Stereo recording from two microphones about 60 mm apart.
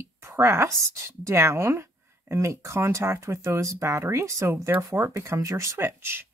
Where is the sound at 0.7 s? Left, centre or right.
Right.